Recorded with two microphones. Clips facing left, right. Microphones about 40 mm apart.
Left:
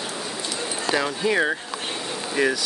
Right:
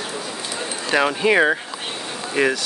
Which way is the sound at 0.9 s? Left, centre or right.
Right.